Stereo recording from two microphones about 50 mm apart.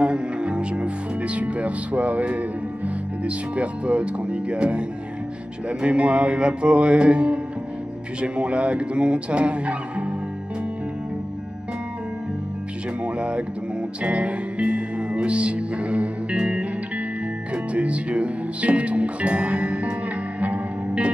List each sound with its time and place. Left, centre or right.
0.0 s speech: right
13.0 s speech: right
14.0 s music: right
17.7 s speech: right
20.3 s music: right